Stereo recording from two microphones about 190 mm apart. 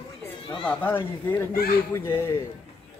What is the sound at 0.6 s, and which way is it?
Speech, 10° left (ahead or behind).